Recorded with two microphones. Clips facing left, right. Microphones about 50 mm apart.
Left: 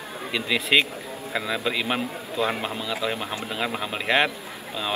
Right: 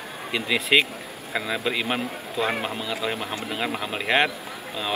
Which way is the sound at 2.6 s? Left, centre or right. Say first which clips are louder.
Even; right.